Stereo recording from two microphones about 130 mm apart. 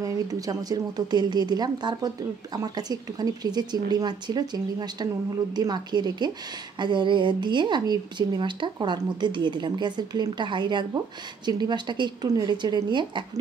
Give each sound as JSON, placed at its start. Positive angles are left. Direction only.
{"t": 0.0, "sound": "a woman's voice", "side_deg": -30}